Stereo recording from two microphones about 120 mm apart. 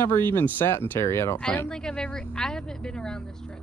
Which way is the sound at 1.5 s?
10° left (ahead or behind).